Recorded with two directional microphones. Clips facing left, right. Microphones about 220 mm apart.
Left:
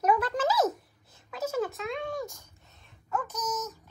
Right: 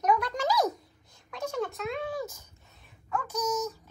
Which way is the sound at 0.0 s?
5° left (ahead or behind).